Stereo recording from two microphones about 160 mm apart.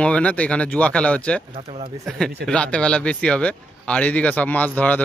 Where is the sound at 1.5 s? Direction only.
40° right (ahead or behind).